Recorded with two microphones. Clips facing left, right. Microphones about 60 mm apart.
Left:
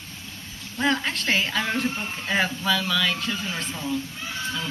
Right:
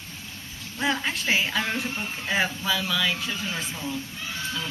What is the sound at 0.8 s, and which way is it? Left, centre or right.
A woman's voice, centre.